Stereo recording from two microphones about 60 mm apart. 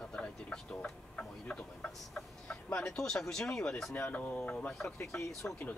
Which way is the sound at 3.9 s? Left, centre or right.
Left.